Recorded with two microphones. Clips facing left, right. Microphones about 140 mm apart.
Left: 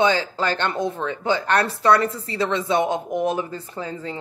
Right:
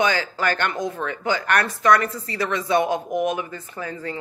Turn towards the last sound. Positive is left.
turn(degrees=25)  # may be behind; listen again after turning